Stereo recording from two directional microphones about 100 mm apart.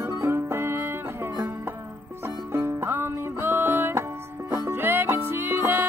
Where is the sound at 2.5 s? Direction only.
20° right (ahead or behind).